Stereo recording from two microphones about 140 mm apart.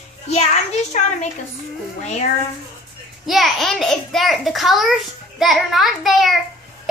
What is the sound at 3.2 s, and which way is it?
A child's voice, centre (ahead or behind).